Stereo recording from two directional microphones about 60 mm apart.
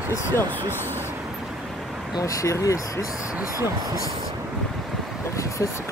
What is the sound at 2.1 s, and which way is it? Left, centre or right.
Speech, left.